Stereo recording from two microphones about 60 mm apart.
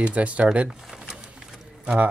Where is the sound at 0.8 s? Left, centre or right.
Centre.